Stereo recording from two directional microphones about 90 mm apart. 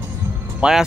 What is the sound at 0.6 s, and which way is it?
Speech, 5° right (ahead or behind).